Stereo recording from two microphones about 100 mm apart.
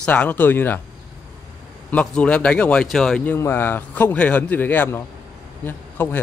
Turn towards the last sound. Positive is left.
turn(degrees=20)  # may be behind; listen again after turning